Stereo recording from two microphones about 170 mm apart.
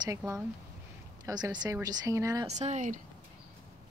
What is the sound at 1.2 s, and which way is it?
Speech, 25° right (ahead or behind).